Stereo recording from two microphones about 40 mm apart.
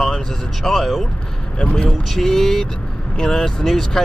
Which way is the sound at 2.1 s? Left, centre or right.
Centre.